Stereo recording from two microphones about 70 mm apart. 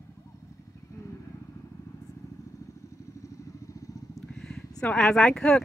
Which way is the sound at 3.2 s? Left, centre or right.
Left.